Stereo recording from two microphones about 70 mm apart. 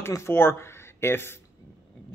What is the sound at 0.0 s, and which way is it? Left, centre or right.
A man's voice, left.